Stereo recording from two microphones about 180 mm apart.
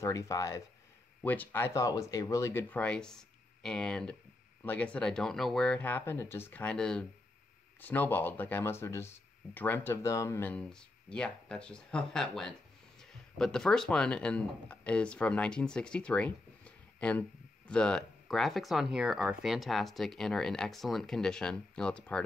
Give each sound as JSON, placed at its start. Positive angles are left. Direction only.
{"t": 0.0, "sound": "speech", "side_deg": 15}